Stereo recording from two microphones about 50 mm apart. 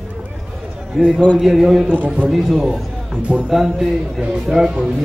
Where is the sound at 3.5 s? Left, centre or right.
Centre.